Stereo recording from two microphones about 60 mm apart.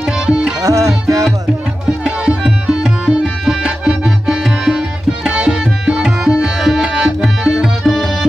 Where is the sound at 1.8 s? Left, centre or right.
Centre.